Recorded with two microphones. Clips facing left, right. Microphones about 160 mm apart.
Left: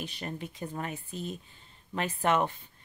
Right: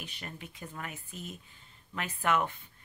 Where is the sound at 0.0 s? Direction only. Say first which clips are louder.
Left 7 dB; 35° left (ahead or behind).